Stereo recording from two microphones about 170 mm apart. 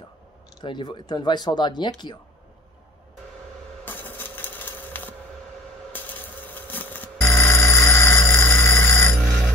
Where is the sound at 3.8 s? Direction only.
10° left (ahead or behind).